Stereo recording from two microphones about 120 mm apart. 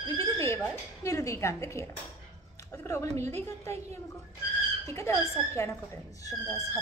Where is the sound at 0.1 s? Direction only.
25° left (ahead or behind).